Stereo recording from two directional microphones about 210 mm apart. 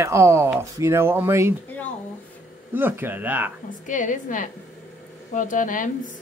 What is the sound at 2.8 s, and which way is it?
Speech, 10° right (ahead or behind).